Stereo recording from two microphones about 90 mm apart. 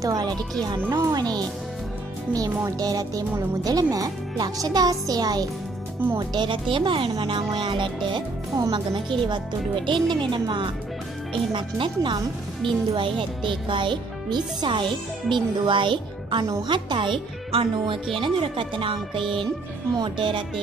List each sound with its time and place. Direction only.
0.0 s speech: 45° right (ahead or behind)
0.8 s speech: 30° right (ahead or behind)
2.3 s speech: 45° right (ahead or behind); by 19.2 s 75° right (ahead or behind)
20.2 s speech: 60° right (ahead or behind)